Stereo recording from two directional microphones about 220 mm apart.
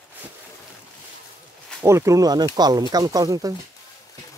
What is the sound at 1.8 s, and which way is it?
Speech, 10° right (ahead or behind).